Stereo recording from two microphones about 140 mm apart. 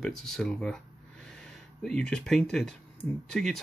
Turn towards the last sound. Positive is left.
turn(degrees=5)  # may be behind; listen again after turning